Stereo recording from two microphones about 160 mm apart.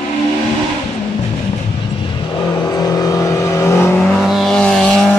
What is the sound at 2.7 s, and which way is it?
Vehicle, 25° left (ahead or behind).